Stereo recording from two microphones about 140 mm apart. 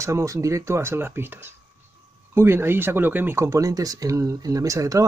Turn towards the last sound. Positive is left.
turn(degrees=-25)  # may be behind; listen again after turning